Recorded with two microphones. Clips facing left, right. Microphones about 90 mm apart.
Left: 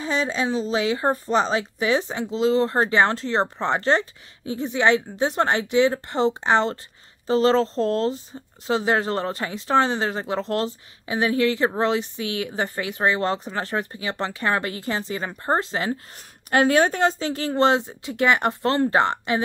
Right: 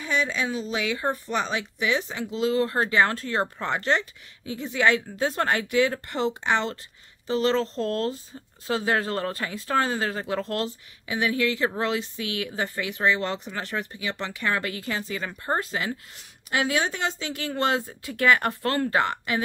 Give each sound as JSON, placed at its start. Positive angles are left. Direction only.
{"t": 0.0, "sound": "speech", "side_deg": 30}
{"t": 16.4, "sound": "speech", "side_deg": 45}